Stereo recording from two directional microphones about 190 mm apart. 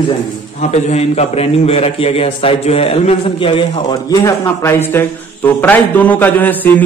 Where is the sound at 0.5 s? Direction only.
35° left (ahead or behind).